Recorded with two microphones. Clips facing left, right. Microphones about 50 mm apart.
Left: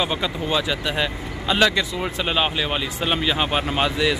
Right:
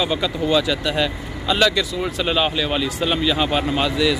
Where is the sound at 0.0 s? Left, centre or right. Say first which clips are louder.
Right 3 dB; left.